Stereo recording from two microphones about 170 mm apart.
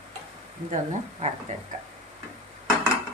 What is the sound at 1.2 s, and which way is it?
Speech, 45° right (ahead or behind).